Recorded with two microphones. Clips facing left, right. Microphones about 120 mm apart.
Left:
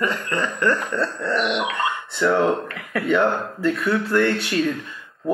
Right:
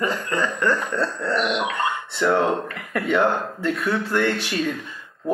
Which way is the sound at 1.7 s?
25° right (ahead or behind).